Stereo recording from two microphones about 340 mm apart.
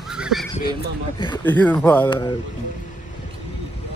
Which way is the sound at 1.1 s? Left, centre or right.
Centre.